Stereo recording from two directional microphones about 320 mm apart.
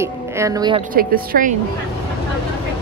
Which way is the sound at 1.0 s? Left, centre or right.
Right.